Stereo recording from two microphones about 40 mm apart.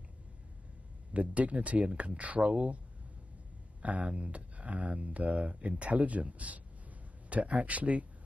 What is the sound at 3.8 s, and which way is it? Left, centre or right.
Speech, right.